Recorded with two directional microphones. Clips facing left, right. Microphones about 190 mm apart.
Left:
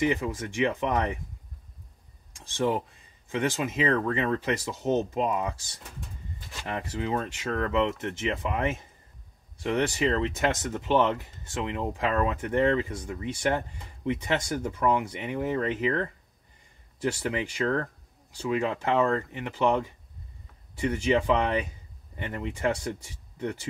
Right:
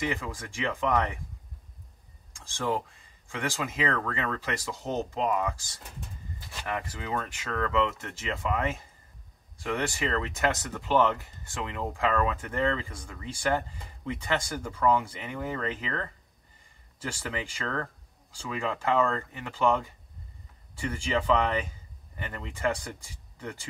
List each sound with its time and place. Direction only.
0.0 s speech: 20° left (ahead or behind)
2.4 s speech: 20° left (ahead or behind)
6.7 s speech: 25° left (ahead or behind)